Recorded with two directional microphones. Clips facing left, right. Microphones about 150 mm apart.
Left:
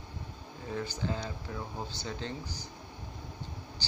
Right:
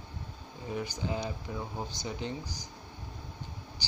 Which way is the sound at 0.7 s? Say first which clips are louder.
Right 1 dB; 15° right (ahead or behind).